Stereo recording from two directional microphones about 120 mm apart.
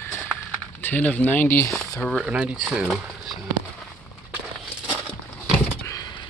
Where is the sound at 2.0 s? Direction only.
5° left (ahead or behind).